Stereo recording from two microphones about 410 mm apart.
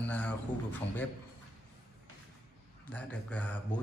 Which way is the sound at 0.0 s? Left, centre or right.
Centre.